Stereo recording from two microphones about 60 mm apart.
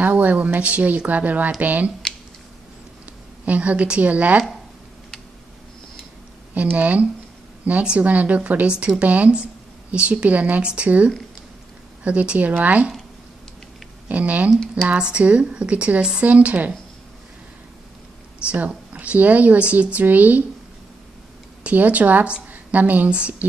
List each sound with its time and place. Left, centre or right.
0.0 s a woman's voice: right
3.4 s a woman's voice: right
6.5 s a woman's voice: right
14.0 s a woman's voice: right
18.9 s a woman's voice: right
21.6 s a woman's voice: right